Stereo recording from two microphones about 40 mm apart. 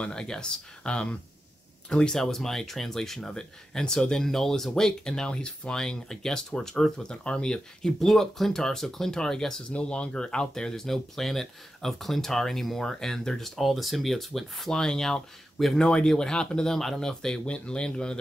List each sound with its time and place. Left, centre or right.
0.0 s speech: centre
2.1 s speech: centre
7.2 s speech: left
8.0 s speech: centre
9.8 s speech: left; by 13.5 s centre
13.6 s speech: centre
14.7 s speech: centre